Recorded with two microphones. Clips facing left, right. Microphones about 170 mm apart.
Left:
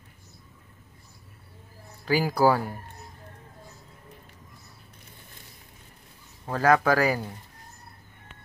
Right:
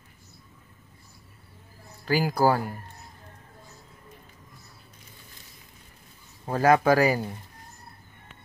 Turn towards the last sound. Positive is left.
turn(degrees=-10)  # may be behind; listen again after turning